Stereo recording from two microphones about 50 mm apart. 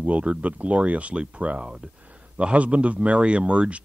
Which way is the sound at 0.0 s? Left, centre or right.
Right.